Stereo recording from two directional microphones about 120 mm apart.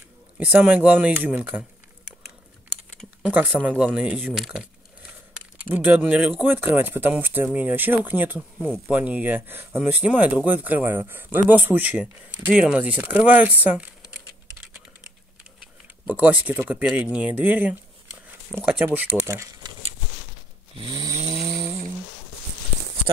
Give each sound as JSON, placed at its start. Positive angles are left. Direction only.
{"t": 0.4, "sound": "speech", "side_deg": -10}
{"t": 3.3, "sound": "speech", "side_deg": -15}
{"t": 5.3, "sound": "speech", "side_deg": -15}
{"t": 8.6, "sound": "speech", "side_deg": 5}
{"t": 8.9, "sound": "speech", "side_deg": -15}
{"t": 16.1, "sound": "speech", "side_deg": -15}
{"t": 18.5, "sound": "speech", "side_deg": 0}
{"t": 18.9, "sound": "speech", "side_deg": -15}
{"t": 20.7, "sound": "snoring", "side_deg": -40}
{"t": 21.1, "sound": "vehicle", "side_deg": -25}